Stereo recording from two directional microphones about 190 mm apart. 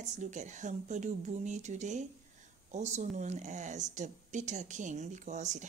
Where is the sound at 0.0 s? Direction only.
40° right (ahead or behind).